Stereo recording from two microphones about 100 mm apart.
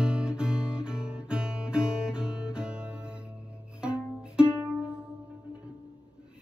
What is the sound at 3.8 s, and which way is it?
Music, 10° right (ahead or behind).